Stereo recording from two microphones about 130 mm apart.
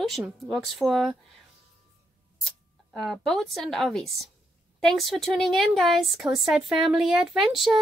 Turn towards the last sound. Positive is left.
turn(degrees=0)  # may be behind; listen again after turning